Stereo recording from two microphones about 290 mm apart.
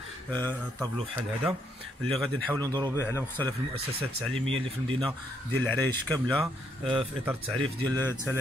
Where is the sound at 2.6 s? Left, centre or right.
Centre.